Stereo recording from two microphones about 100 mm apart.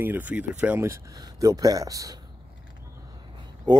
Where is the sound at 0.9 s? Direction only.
35° right (ahead or behind).